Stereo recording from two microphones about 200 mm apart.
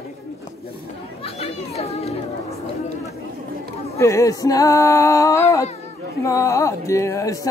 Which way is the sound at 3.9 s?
15° left (ahead or behind).